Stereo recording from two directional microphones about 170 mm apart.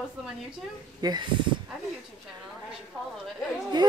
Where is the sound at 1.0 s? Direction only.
20° right (ahead or behind).